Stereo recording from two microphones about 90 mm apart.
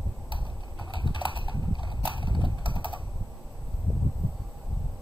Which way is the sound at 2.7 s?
65° left (ahead or behind).